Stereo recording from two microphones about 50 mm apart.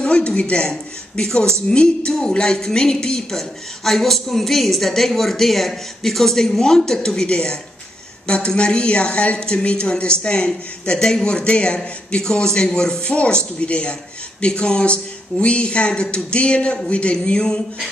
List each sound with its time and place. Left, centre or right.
0.0 s speech: left